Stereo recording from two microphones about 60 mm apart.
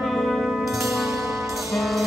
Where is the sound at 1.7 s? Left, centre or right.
Centre.